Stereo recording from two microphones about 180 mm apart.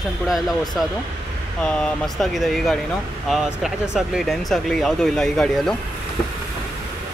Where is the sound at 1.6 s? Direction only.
5° left (ahead or behind).